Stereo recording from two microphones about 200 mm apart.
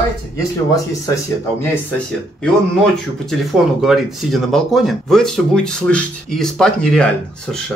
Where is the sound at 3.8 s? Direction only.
Centre (ahead or behind).